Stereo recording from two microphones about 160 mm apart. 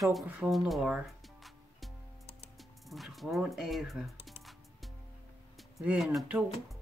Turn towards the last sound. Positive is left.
turn(degrees=-5)  # may be behind; listen again after turning